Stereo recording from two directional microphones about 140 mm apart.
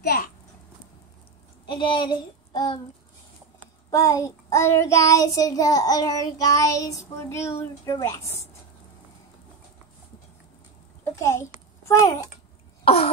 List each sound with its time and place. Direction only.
0.0 s a sound: 90° left
1.7 s speech: 35° left (ahead or behind)
3.9 s child singing: 20° left (ahead or behind)
11.1 s a child's voice: 20° left (ahead or behind)
11.9 s child singing: 20° left (ahead or behind)
12.8 s cough: 45° left (ahead or behind)